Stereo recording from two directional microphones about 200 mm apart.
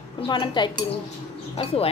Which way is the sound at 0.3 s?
25° left (ahead or behind).